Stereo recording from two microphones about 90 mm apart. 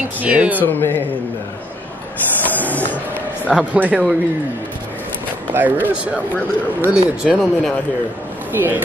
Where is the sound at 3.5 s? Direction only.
15° right (ahead or behind).